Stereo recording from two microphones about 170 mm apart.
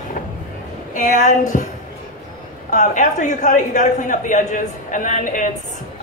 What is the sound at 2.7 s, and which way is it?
A woman's voice, 45° left (ahead or behind).